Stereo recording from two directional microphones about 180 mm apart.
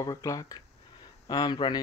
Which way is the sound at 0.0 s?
20° left (ahead or behind).